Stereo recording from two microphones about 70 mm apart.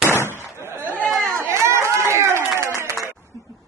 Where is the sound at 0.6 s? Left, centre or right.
Right.